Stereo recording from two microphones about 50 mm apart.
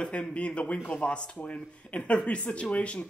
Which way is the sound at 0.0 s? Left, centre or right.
Left.